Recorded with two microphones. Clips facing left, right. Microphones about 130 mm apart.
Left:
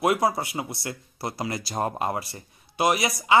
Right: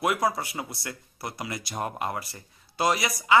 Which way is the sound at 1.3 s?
35° left (ahead or behind).